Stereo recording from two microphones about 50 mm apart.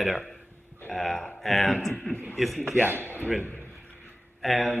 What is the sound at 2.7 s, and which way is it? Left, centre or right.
Speech, right.